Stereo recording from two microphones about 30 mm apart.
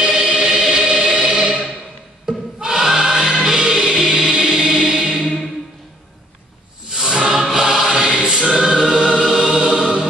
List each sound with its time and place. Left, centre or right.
0.0 s choir: centre
1.0 s music: right
2.2 s choir: centre
6.9 s music: right
7.5 s choir: centre
8.9 s choir: right
9.2 s music: centre